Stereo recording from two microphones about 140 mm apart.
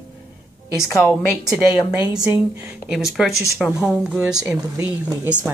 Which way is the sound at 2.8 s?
5° right (ahead or behind).